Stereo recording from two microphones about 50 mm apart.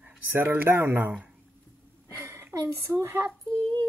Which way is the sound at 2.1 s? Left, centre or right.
Right.